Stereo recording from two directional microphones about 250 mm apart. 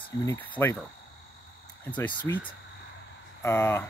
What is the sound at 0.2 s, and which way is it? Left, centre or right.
Speech, centre.